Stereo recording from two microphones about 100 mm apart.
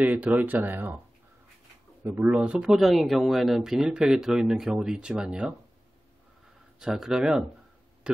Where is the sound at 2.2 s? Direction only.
10° right (ahead or behind).